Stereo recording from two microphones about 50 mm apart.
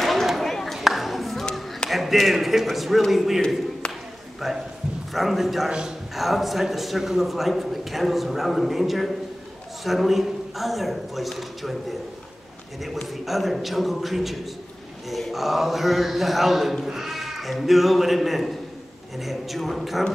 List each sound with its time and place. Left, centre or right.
0.0 s a sound: centre
1.9 s a man's voice: centre
3.8 s a sound: centre
4.4 s a man's voice: centre
5.7 s a man's voice: centre
6.1 s a man's voice: centre
13.1 s a man's voice: centre